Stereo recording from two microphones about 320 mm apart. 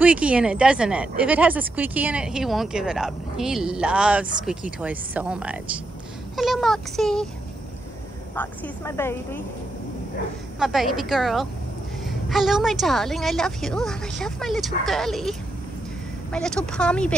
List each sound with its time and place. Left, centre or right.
0.0 s a woman's voice: centre
8.4 s speech: centre
10.6 s a woman's voice: centre